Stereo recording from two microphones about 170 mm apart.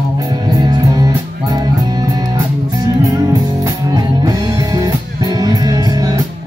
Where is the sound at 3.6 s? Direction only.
20° right (ahead or behind).